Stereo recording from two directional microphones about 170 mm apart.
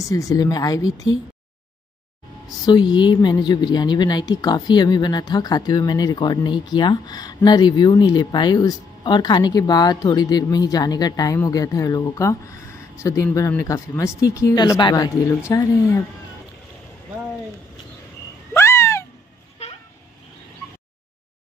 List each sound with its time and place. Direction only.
0.0 s speech: 20° left (ahead or behind)
2.6 s speech: 25° left (ahead or behind)
18.5 s cat: 15° left (ahead or behind)